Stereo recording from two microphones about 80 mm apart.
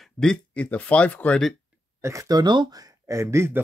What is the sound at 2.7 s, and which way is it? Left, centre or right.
Speech, right.